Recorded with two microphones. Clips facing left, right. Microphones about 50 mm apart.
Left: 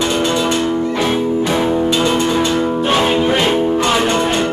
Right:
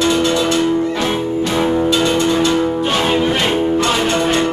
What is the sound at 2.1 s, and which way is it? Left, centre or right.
Music, centre.